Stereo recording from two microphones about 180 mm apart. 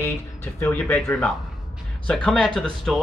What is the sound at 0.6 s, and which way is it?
Speech, 10° left (ahead or behind).